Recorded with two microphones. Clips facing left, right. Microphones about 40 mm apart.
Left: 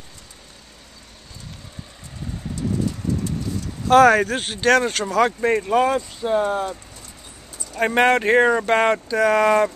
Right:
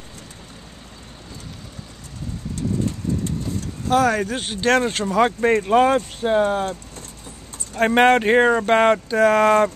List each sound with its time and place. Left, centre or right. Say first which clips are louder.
4.0 s speech: left 5 dB; centre
4.6 s speech: left 1 dB; centre
5.8 s speech: right 3 dB; right
7.8 s speech: right 2 dB; right
9.2 s speech: right 1 dB; right